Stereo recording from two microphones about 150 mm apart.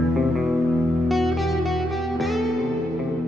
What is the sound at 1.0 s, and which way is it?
Music, centre (ahead or behind).